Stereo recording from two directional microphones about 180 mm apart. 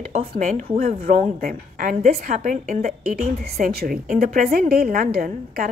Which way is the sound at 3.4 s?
60° right (ahead or behind).